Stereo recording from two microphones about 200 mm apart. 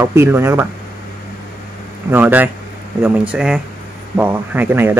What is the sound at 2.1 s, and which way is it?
A man's voice, 10° right (ahead or behind).